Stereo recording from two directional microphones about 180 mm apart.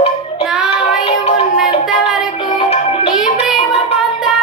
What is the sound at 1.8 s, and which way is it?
Music, centre (ahead or behind).